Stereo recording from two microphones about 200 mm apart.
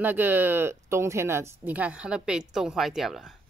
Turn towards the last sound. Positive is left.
turn(degrees=0)  # may be behind; listen again after turning